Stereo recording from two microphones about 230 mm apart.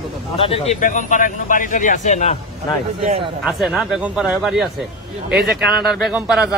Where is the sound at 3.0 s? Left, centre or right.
Right.